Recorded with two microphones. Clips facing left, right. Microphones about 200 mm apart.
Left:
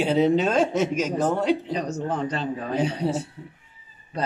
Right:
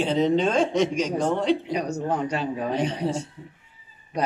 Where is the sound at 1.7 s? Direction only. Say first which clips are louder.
Right 1 dB; 10° right (ahead or behind).